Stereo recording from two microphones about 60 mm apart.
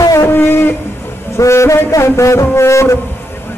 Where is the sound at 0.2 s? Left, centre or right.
Left.